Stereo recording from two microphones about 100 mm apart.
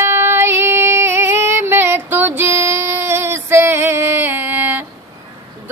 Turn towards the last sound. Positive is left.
turn(degrees=-20)  # may be behind; listen again after turning